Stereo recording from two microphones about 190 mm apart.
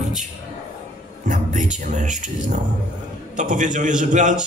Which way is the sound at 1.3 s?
40° right (ahead or behind).